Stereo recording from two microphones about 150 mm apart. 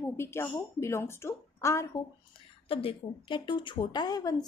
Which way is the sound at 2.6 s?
35° left (ahead or behind).